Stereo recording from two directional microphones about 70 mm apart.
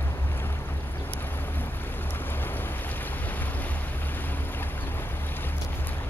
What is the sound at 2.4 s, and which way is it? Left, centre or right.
Boat, left.